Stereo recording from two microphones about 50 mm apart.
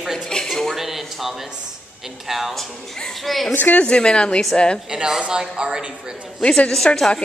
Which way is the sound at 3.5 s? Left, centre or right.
Left.